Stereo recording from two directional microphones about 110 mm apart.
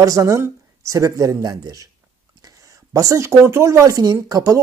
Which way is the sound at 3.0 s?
30° right (ahead or behind).